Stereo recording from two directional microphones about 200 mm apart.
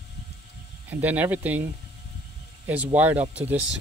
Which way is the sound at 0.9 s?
10° right (ahead or behind).